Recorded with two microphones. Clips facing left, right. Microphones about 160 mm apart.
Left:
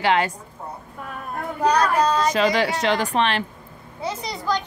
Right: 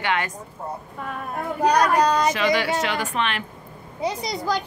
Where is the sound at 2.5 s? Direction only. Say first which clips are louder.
Left 1 dB; 35° left (ahead or behind).